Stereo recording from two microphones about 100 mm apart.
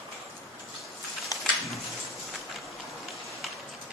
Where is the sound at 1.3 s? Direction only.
35° left (ahead or behind).